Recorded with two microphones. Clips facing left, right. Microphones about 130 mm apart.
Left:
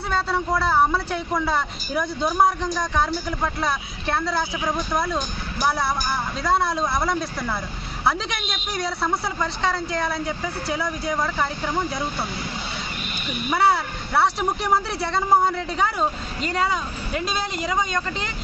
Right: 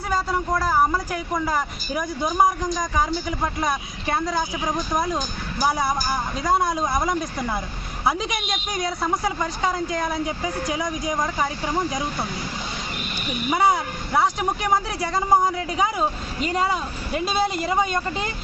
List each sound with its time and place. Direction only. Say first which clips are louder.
0.7 s speech: left 1 dB; 10° right (ahead or behind)
13.5 s speech: even; 15° right (ahead or behind)